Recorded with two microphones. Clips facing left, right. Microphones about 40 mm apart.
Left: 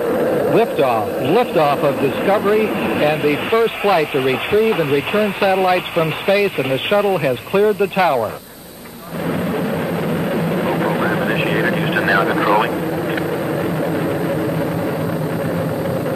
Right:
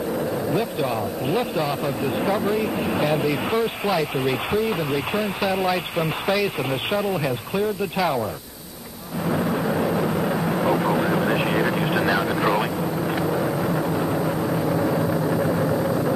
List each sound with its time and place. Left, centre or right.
0.1 s a man's voice: left
9.3 s vehicle: centre
13.7 s vehicle: centre
15.4 s vehicle: centre